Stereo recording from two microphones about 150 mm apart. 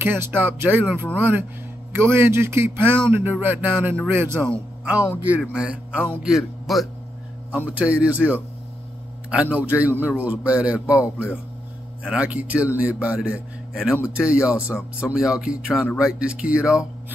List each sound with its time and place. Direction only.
0.0 s a man's voice: 15° right (ahead or behind)